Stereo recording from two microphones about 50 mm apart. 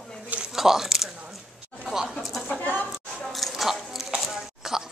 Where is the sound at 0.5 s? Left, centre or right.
Centre.